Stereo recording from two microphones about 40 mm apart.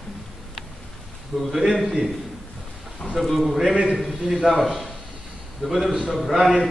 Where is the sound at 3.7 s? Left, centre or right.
Centre.